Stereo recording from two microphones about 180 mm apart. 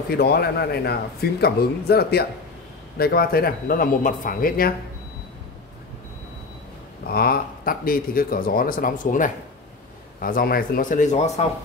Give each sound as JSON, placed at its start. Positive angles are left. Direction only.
{"t": 0.1, "sound": "a man's voice", "side_deg": 60}
{"t": 7.1, "sound": "speech", "side_deg": 55}